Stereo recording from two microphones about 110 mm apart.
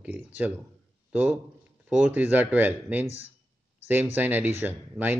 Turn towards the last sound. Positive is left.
turn(degrees=-15)  # may be behind; listen again after turning